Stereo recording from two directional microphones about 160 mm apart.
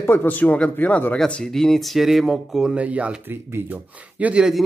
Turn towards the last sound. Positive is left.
turn(degrees=-5)  # may be behind; listen again after turning